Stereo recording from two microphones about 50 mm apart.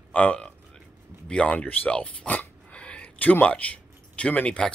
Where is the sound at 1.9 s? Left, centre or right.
Left.